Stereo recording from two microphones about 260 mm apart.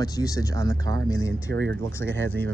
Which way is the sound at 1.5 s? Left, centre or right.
Right.